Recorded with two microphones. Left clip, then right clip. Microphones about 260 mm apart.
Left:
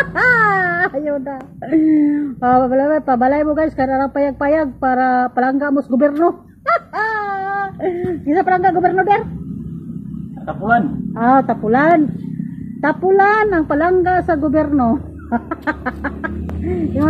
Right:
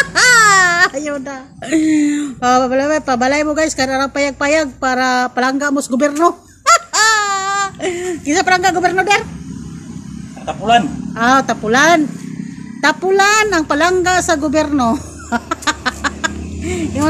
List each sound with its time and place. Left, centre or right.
0.0 s baby cry: right
0.9 s a child's voice: right
6.2 s babbling: right
11.1 s a woman's voice: right